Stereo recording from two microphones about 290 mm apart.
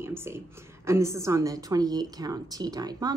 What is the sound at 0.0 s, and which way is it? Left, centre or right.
A woman's voice, centre.